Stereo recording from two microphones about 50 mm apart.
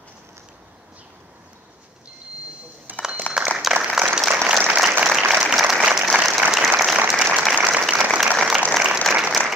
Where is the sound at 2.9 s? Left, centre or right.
Right.